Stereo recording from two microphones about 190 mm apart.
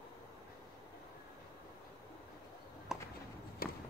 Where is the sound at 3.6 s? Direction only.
55° left (ahead or behind).